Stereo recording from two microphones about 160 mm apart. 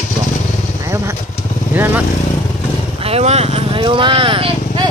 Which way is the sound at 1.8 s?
10° right (ahead or behind).